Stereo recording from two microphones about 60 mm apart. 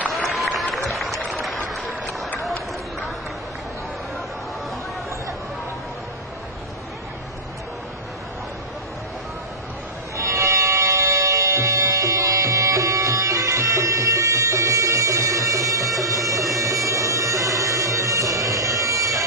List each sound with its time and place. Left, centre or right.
0.2 s applause: centre
0.8 s a sound: centre
10.1 s music: right
16.1 s bagpipes: right